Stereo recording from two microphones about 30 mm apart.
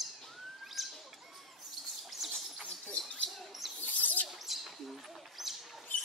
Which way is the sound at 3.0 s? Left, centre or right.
Centre.